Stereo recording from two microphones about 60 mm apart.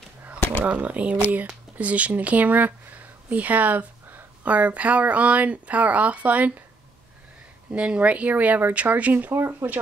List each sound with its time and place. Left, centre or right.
0.7 s speech: right
7.7 s speech: centre